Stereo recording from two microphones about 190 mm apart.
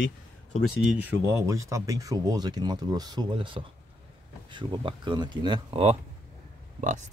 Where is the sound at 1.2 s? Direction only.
15° right (ahead or behind).